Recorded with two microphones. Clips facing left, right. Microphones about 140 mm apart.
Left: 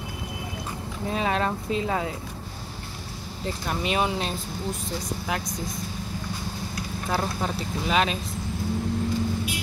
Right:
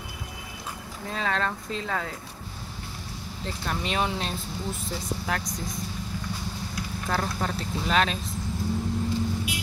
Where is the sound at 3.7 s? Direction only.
10° left (ahead or behind).